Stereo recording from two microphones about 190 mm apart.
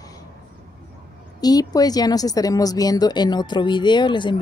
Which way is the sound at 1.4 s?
20° left (ahead or behind).